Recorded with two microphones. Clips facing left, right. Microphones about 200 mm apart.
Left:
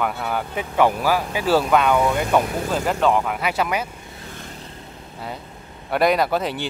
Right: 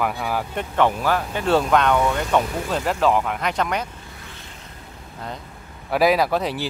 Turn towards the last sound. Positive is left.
turn(degrees=0)  # may be behind; listen again after turning